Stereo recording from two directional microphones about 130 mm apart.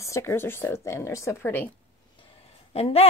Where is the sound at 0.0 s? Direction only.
20° left (ahead or behind).